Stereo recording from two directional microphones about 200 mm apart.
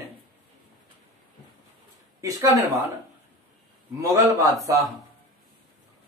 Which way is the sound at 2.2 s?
15° right (ahead or behind).